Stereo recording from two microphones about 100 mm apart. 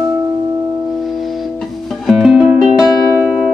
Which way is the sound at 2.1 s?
5° right (ahead or behind).